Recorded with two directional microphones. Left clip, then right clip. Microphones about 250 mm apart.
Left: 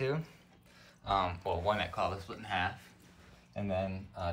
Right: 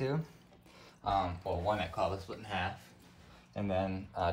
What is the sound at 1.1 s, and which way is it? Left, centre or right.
Speech, centre.